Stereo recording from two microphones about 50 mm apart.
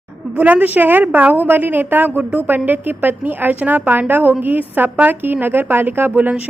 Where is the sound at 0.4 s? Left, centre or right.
Right.